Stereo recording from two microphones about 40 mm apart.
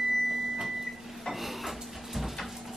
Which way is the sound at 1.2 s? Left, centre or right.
Centre.